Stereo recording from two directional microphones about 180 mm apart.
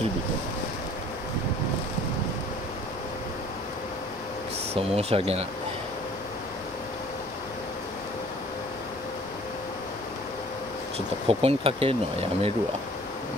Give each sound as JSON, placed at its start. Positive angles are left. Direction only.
{"t": 4.9, "sound": "speech", "side_deg": -35}
{"t": 11.2, "sound": "speech", "side_deg": -35}